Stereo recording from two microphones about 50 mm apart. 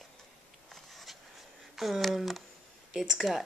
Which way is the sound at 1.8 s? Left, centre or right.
Centre.